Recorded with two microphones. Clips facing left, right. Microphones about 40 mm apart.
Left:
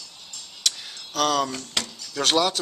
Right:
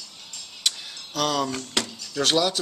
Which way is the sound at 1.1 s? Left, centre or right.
Centre.